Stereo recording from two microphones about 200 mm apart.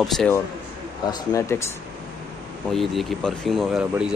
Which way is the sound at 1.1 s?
15° left (ahead or behind).